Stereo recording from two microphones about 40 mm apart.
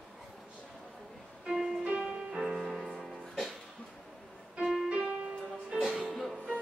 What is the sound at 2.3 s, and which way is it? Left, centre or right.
Music, centre.